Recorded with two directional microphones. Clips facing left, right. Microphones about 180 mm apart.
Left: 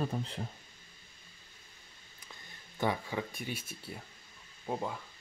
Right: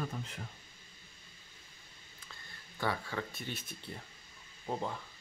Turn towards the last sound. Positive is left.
turn(degrees=5)  # may be behind; listen again after turning